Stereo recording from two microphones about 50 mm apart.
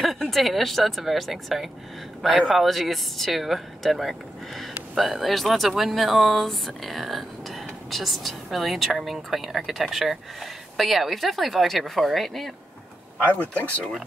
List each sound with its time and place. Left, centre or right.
0.0 s speech: centre
13.2 s speech: left